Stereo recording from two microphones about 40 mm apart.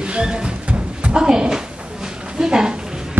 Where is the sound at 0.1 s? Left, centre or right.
Right.